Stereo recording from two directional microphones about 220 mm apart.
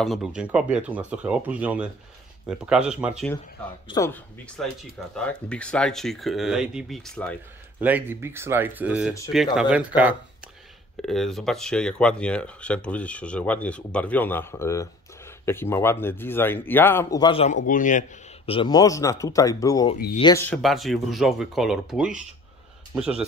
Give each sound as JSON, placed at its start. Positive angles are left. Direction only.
{"t": 0.0, "sound": "speech", "side_deg": 0}
{"t": 3.8, "sound": "a man's voice", "side_deg": 15}
{"t": 4.6, "sound": "speech", "side_deg": 0}
{"t": 7.8, "sound": "a man's voice", "side_deg": -10}
{"t": 17.6, "sound": "a man's voice", "side_deg": 35}
{"t": 20.4, "sound": "speech", "side_deg": 0}